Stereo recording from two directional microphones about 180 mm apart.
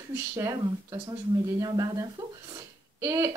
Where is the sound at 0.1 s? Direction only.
15° right (ahead or behind).